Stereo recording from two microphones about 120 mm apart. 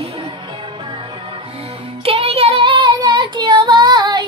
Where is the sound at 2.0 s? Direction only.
50° right (ahead or behind).